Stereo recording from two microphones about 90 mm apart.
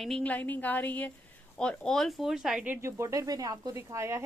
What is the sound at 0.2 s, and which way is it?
A woman's voice, 15° left (ahead or behind).